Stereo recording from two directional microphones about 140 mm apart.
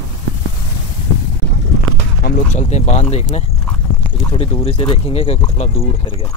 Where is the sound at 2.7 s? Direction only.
50° left (ahead or behind).